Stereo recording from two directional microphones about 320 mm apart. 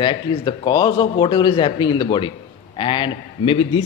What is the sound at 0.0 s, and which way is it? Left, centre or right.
A man's voice, centre.